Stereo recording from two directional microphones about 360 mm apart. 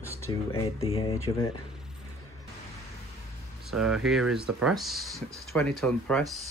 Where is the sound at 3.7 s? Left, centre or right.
Centre.